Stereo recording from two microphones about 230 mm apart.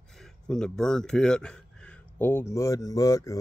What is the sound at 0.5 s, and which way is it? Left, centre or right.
Speech, centre.